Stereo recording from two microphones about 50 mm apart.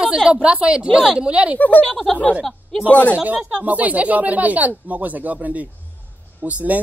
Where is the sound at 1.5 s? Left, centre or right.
Left.